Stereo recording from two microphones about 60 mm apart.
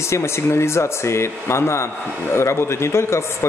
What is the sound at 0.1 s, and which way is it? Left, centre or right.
A man's voice, left.